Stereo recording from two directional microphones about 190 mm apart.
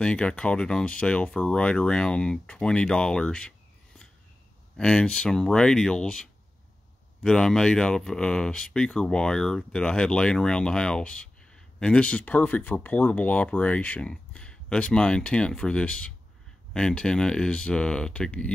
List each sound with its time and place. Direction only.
0.0 s speech: 5° left (ahead or behind)
7.2 s speech: 5° left (ahead or behind)